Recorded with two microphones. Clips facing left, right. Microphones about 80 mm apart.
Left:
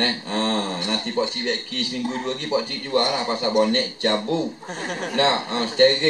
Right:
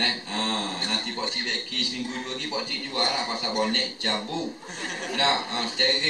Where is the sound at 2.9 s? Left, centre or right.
Left.